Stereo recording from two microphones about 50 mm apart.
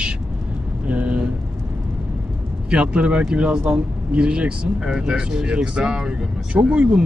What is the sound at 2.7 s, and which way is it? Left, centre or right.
Speech, right.